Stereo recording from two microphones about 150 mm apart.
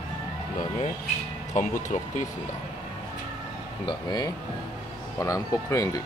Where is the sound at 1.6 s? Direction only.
55° left (ahead or behind).